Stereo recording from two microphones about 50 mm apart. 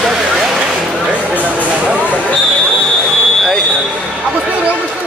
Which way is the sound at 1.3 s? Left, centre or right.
Right.